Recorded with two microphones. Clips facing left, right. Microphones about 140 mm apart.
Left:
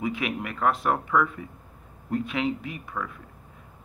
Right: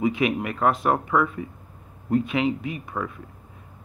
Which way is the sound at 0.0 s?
20° right (ahead or behind).